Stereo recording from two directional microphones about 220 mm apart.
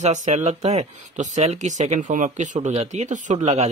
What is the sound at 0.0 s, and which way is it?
Speech, 30° right (ahead or behind).